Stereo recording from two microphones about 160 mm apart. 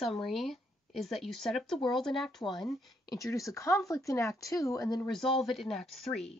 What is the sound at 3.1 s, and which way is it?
Speech, 20° left (ahead or behind).